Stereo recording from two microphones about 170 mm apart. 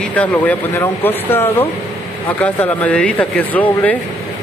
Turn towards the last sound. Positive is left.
turn(degrees=10)  # may be behind; listen again after turning